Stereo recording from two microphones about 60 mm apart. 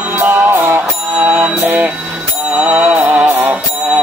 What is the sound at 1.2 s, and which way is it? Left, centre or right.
Music, right.